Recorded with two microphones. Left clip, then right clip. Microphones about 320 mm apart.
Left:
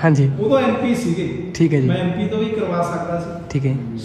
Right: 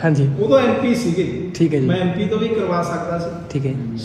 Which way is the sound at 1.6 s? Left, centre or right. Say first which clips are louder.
Even; left.